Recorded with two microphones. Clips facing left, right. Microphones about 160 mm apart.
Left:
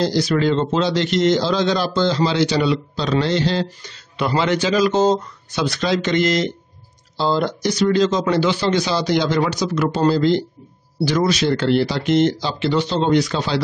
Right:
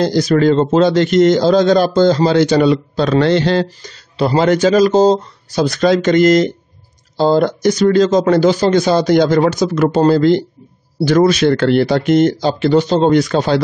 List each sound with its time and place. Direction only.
0.0 s a man's voice: 45° right (ahead or behind)
3.8 s a man's voice: 40° right (ahead or behind)